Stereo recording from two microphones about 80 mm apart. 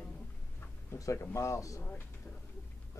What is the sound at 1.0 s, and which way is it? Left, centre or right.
Speech, left.